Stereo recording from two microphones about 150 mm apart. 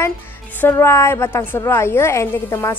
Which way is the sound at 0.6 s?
15° left (ahead or behind).